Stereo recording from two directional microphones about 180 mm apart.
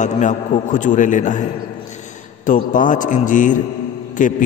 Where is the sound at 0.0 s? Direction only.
40° left (ahead or behind).